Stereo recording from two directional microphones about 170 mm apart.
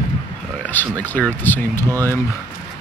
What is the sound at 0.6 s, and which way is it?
Speech, 10° left (ahead or behind).